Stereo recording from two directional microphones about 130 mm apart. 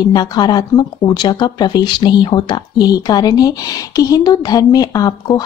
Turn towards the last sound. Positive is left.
turn(degrees=30)  # may be behind; listen again after turning